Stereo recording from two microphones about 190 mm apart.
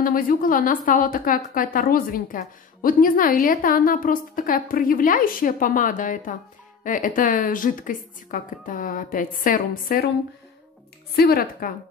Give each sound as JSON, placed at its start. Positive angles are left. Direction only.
{"t": 0.0, "sound": "a woman's voice", "side_deg": 45}
{"t": 11.1, "sound": "a woman's voice", "side_deg": 50}